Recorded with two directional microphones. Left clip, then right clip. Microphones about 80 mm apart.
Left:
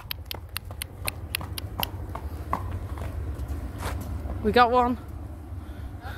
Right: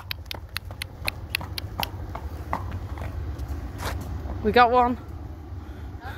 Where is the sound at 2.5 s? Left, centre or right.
Centre.